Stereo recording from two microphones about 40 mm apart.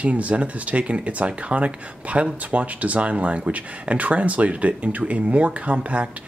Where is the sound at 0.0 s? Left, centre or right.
Right.